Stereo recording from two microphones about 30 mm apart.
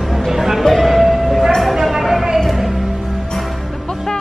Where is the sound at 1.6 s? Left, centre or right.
Centre.